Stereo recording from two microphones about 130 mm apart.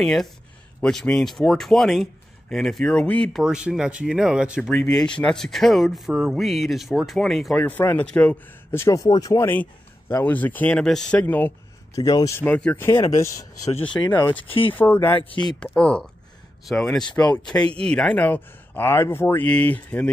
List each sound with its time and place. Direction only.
0.0 s speech: centre (ahead or behind)
3.4 s speech: 5° right (ahead or behind)
4.6 s speech: 5° left (ahead or behind)
7.6 s speech: 15° left (ahead or behind)
11.9 s speech: 30° left (ahead or behind)
12.4 s speech: 10° left (ahead or behind)
13.7 s speech: 50° left (ahead or behind)
14.1 s speech: 15° left (ahead or behind)